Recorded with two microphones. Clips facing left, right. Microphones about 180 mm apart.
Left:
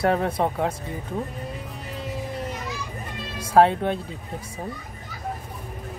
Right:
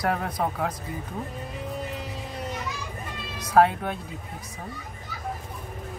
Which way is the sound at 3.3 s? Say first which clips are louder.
Left 3 dB; 30° left (ahead or behind).